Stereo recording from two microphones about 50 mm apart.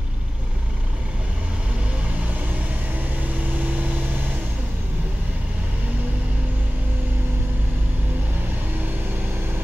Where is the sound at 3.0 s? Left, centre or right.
Right.